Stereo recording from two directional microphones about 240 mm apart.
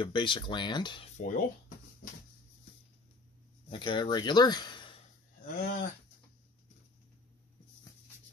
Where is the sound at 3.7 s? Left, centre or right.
Centre.